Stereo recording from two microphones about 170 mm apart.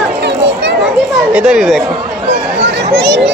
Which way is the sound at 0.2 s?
90° right.